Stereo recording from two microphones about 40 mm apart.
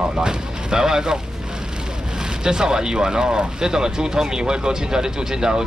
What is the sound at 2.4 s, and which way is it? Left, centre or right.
Speech, centre.